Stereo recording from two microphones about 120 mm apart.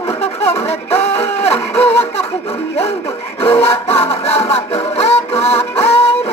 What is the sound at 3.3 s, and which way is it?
Music, 55° left (ahead or behind).